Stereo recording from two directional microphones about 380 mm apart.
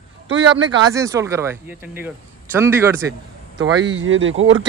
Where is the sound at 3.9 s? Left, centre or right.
Right.